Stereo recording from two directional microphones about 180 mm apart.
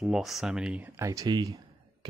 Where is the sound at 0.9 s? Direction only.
20° right (ahead or behind).